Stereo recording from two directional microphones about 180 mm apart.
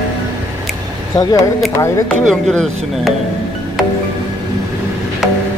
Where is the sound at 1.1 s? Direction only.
20° left (ahead or behind).